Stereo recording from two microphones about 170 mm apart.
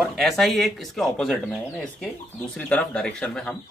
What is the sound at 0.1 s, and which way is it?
Speech, centre (ahead or behind).